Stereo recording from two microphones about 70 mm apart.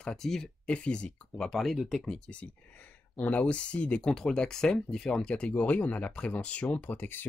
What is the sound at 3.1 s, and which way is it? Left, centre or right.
Speech, left.